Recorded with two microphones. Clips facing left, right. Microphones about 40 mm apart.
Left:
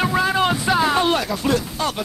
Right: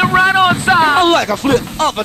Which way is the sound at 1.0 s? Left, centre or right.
Right.